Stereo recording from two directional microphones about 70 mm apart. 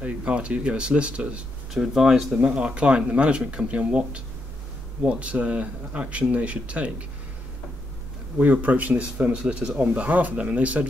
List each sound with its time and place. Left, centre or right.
0.0 s speech: centre
1.7 s speech: centre
8.4 s speech: right